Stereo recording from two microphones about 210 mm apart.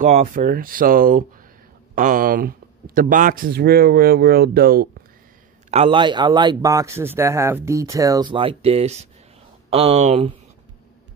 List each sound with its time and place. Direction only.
0.0 s speech: 35° right (ahead or behind)
5.7 s speech: 25° right (ahead or behind)